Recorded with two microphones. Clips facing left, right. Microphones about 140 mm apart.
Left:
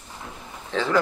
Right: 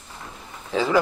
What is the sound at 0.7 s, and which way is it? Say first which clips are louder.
Speech: right 2 dB; 10° right (ahead or behind).